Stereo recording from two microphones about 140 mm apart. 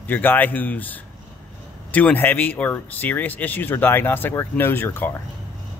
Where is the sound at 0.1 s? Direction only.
15° left (ahead or behind).